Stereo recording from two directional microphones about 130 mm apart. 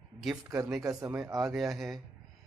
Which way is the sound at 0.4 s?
25° right (ahead or behind).